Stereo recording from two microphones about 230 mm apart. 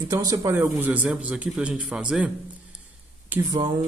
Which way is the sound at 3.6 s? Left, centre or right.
Right.